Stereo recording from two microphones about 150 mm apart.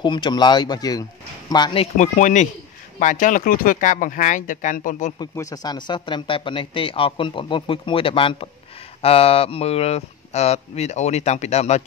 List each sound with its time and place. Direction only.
0.0 s speech: 30° left (ahead or behind)
2.0 s speech: 55° left (ahead or behind)
5.2 s speech: 25° left (ahead or behind); by 11.8 s 45° left (ahead or behind)